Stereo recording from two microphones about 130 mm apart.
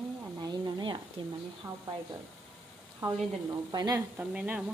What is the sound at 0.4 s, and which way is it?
Stir, 35° right (ahead or behind).